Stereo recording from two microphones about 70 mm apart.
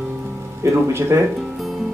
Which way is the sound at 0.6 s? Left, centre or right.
Right.